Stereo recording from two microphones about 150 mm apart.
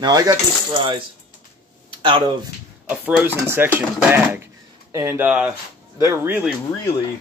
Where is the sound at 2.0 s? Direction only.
30° right (ahead or behind).